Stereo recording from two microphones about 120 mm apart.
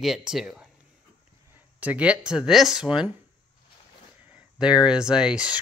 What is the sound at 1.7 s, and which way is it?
Speech, 10° right (ahead or behind).